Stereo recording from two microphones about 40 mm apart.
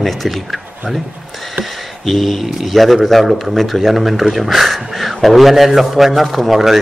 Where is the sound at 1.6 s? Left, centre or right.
Centre.